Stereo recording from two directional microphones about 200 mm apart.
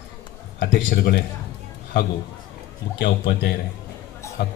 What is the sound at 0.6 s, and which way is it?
Speech, 55° left (ahead or behind).